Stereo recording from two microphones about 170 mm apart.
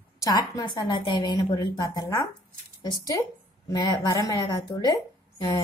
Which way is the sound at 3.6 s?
25° left (ahead or behind).